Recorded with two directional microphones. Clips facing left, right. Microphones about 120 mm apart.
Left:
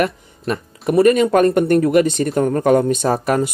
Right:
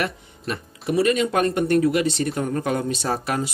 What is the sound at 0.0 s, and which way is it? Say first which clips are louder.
Speech: left 7 dB; 50° left (ahead or behind).